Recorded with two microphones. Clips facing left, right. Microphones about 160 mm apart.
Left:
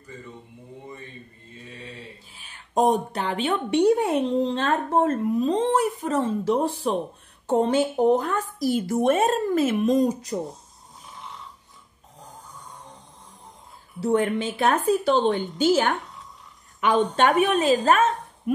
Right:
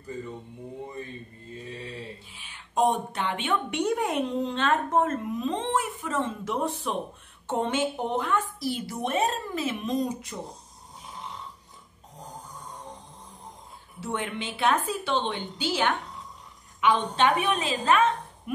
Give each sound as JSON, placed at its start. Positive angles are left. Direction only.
{"t": 2.3, "sound": "a woman's voice", "side_deg": 40}
{"t": 14.0, "sound": "a woman's voice", "side_deg": 40}